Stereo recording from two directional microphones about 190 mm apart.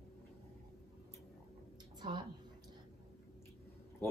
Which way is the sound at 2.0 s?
20° right (ahead or behind).